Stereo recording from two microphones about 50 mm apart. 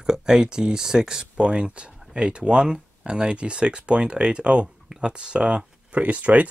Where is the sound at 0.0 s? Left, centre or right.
Centre.